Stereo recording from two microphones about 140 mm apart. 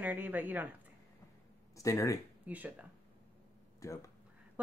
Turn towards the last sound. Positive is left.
turn(degrees=20)  # may be behind; listen again after turning